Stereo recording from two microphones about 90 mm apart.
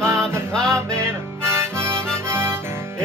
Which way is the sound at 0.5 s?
10° left (ahead or behind).